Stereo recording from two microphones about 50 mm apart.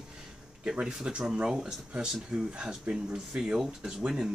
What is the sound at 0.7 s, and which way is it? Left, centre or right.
Speech, centre.